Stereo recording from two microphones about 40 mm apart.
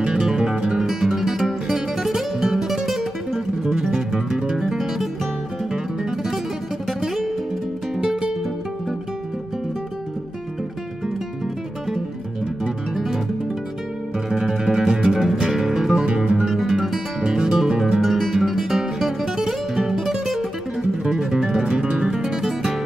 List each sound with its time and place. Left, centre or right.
0.4 s music: centre
8.0 s music: centre
12.9 s guitar: centre
14.3 s music: centre
16.1 s music: right
16.4 s music: centre